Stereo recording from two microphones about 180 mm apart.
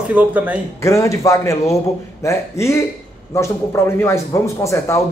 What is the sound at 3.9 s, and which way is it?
A man's voice, 15° left (ahead or behind).